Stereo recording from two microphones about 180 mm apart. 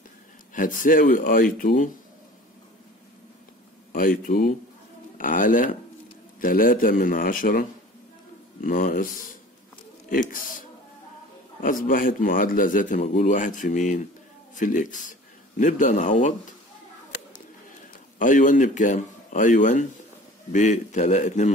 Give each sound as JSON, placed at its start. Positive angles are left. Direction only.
{"t": 0.6, "sound": "speech", "side_deg": 50}
{"t": 3.9, "sound": "speech", "side_deg": 50}
{"t": 11.6, "sound": "a man's voice", "side_deg": 50}
{"t": 18.2, "sound": "a man's voice", "side_deg": 45}